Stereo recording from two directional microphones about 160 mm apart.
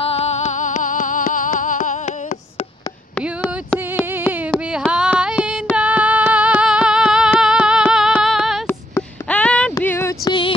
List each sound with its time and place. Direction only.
0.0 s music: 40° left (ahead or behind)
3.8 s carnatic music: 10° right (ahead or behind)
5.2 s female singing: 5° right (ahead or behind)
8.6 s a sound: 10° left (ahead or behind)
9.8 s female singing: 15° left (ahead or behind)